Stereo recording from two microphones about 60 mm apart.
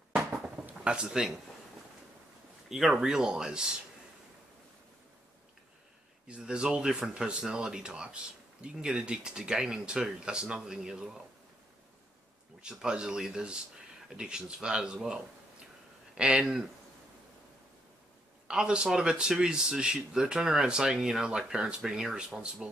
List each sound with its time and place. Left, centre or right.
0.1 s a sound: centre
0.8 s speech: centre
2.7 s speech: centre
6.2 s speech: centre
12.6 s speech: centre
18.5 s speech: centre